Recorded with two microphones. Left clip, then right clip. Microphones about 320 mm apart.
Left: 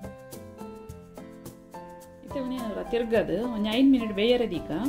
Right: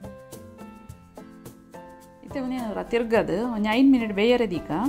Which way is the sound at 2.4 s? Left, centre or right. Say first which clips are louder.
Right 3 dB; centre.